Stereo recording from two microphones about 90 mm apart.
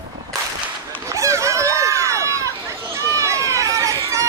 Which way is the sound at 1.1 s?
35° right (ahead or behind).